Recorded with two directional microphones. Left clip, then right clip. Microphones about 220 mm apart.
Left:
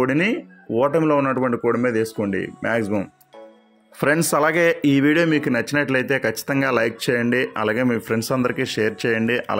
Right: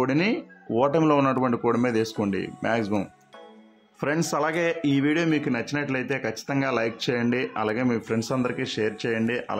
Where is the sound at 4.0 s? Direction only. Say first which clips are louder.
Left 7 dB; 15° left (ahead or behind).